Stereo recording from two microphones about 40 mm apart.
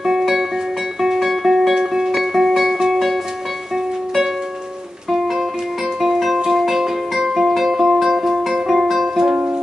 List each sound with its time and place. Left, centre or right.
1.0 s music: centre
6.1 s music: centre